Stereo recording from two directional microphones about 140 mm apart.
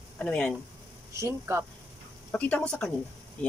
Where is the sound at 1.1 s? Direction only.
20° right (ahead or behind).